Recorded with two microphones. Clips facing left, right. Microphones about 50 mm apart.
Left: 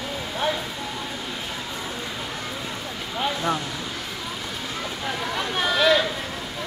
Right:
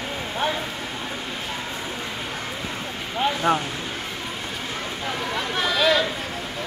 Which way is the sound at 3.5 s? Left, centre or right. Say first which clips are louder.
Right 6 dB; right.